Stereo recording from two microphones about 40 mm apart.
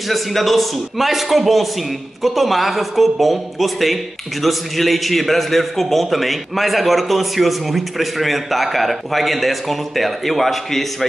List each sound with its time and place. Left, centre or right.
0.1 s a man's voice: centre